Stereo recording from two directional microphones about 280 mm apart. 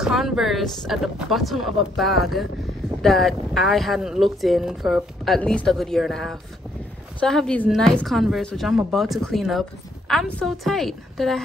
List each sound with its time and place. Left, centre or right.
0.0 s a woman's voice: centre